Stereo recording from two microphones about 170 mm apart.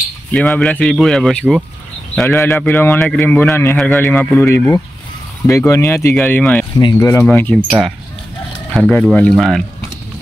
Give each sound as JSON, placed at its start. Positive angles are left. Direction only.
{"t": 0.3, "sound": "speech", "side_deg": 5}
{"t": 6.8, "sound": "speech", "side_deg": 25}
{"t": 7.2, "sound": "speech", "side_deg": 10}
{"t": 8.7, "sound": "speech", "side_deg": 5}